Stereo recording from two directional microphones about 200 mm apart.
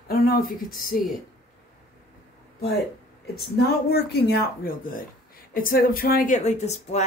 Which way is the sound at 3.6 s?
55° left (ahead or behind).